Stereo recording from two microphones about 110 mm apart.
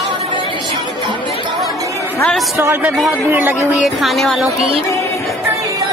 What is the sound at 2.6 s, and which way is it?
Speech, 25° right (ahead or behind).